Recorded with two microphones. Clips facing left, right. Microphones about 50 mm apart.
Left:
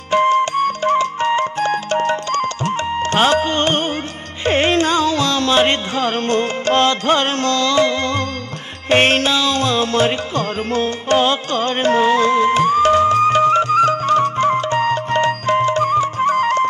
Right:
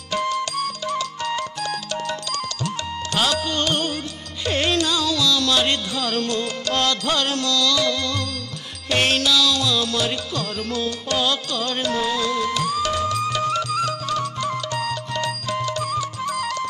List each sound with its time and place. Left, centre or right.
0.1 s music: left